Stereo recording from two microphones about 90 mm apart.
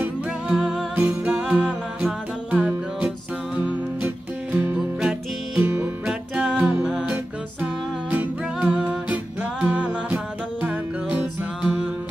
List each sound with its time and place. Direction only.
0.5 s music: 10° right (ahead or behind)
6.0 s music: 10° right (ahead or behind)